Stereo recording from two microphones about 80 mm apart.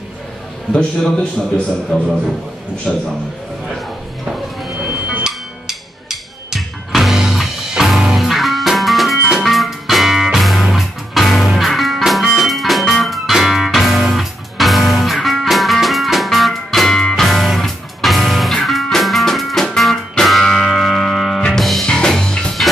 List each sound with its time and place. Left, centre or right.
0.7 s a man's voice: centre
2.9 s a man's voice: centre
4.9 s music: centre
5.2 s music: centre